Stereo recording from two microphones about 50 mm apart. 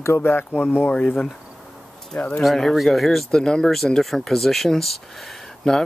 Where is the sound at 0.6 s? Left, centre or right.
Left.